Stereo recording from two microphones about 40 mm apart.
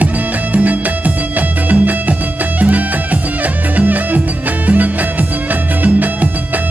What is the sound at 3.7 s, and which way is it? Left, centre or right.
Music, right.